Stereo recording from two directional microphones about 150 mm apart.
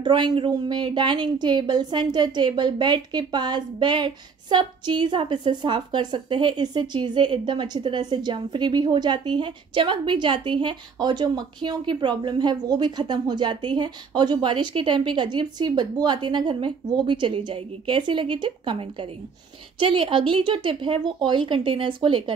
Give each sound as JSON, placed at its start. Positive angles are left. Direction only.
{"t": 0.0, "sound": "a woman's voice", "side_deg": -30}